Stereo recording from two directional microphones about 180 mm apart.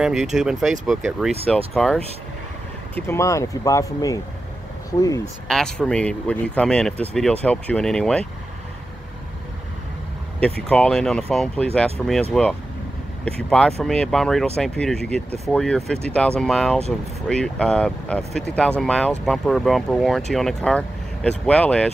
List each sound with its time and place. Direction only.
0.0 s speech: centre (ahead or behind)
3.1 s speech: 15° left (ahead or behind)
5.5 s speech: 5° left (ahead or behind)
10.4 s speech: 5° left (ahead or behind)